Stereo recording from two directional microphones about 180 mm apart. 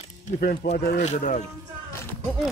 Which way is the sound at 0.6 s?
40° left (ahead or behind).